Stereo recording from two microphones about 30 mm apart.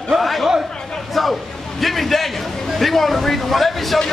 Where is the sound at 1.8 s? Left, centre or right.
Centre.